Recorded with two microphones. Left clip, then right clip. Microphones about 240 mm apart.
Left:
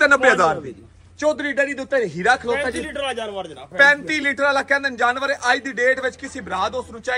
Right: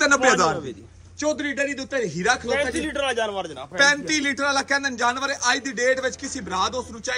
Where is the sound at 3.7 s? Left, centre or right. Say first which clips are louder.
Left 4 dB; centre.